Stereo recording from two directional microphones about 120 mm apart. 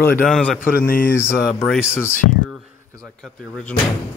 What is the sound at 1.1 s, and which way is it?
Speech, 20° left (ahead or behind).